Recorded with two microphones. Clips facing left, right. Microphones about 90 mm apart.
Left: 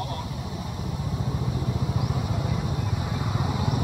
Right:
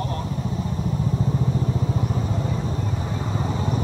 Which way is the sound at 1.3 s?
5° left (ahead or behind).